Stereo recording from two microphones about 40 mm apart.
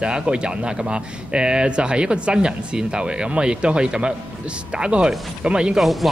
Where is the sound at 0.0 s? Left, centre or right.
Right.